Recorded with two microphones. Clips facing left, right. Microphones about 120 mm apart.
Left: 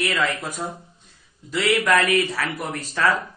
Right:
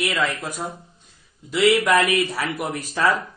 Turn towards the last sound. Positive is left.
turn(degrees=-15)  # may be behind; listen again after turning